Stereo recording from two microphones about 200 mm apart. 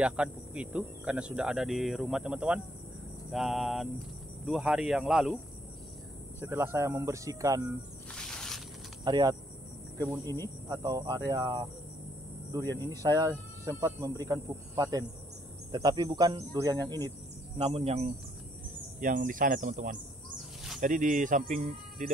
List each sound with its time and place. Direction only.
0.0 s speech: 5° right (ahead or behind)
6.4 s speech: 10° right (ahead or behind)
8.1 s snake: 5° left (ahead or behind)
9.0 s speech: 20° right (ahead or behind)
12.8 s speech: 15° right (ahead or behind)
17.6 s speech: 30° right (ahead or behind)
18.9 s speech: 45° right (ahead or behind)